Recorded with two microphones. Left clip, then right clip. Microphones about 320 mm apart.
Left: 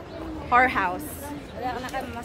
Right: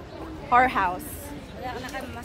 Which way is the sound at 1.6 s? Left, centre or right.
Centre.